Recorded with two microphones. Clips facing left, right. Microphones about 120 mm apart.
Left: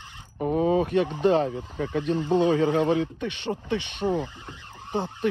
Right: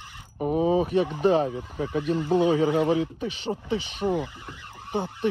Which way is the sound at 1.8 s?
40° right (ahead or behind).